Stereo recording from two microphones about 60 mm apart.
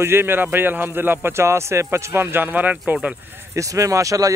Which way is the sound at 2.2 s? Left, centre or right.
Right.